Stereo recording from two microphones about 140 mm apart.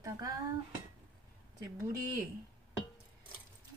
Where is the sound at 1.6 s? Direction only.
25° right (ahead or behind).